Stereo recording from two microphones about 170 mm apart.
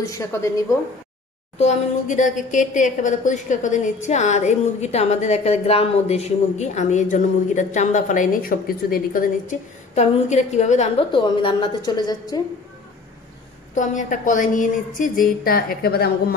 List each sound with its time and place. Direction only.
0.0 s a woman's voice: 20° left (ahead or behind)
1.6 s a woman's voice: 45° left (ahead or behind); by 12.4 s 25° left (ahead or behind)
13.7 s a woman's voice: 50° left (ahead or behind); by 16.3 s 65° left (ahead or behind)